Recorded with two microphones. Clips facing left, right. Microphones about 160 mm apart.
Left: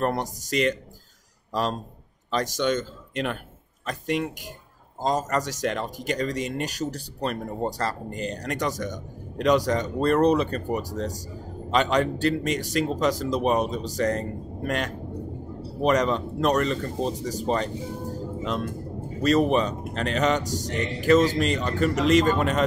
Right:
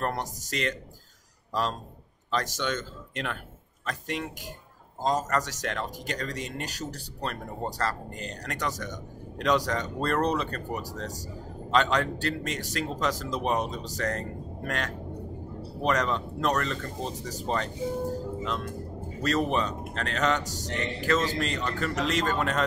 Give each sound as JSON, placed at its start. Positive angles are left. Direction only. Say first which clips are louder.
{"t": 0.0, "sound": "a man's voice", "louder": "left 5 dB", "side_deg": 15}
{"t": 19.2, "sound": "speech", "louder": "left 6 dB", "side_deg": 15}